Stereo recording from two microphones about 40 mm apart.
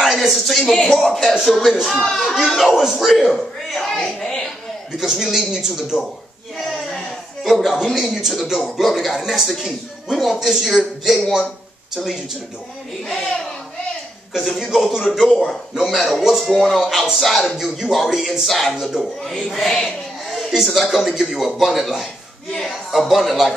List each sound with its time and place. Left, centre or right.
0.0 s a sound: centre
0.9 s speech: centre
4.0 s music: centre
4.9 s a man's voice: centre
7.4 s speech: centre
13.1 s a sound: centre
14.4 s speech: centre
19.7 s a sound: centre
20.5 s a man's voice: centre
20.8 s speech: centre